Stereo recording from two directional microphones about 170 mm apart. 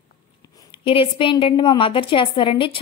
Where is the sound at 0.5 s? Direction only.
30° left (ahead or behind).